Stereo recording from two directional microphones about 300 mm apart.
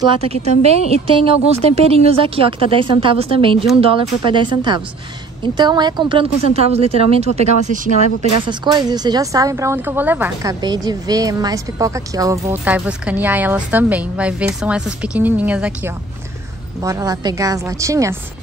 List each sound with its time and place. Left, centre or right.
0.0 s speech: centre